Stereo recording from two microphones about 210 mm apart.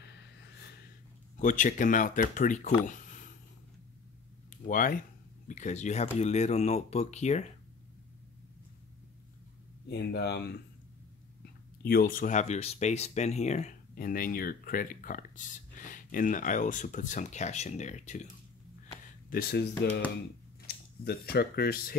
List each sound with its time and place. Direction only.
0.0 s gasp: 55° left (ahead or behind)
1.3 s speech: 35° left (ahead or behind)
4.5 s a sound: 40° left (ahead or behind)
5.5 s speech: 35° left (ahead or behind)
9.8 s speech: 50° left (ahead or behind)
11.8 s speech: 45° left (ahead or behind)
19.2 s speech: 45° left (ahead or behind)